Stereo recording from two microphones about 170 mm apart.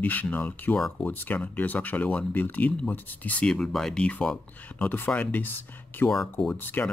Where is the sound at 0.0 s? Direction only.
10° left (ahead or behind).